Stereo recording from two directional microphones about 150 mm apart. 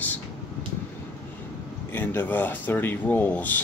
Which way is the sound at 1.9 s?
15° left (ahead or behind).